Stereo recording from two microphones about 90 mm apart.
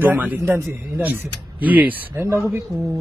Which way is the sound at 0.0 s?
20° right (ahead or behind).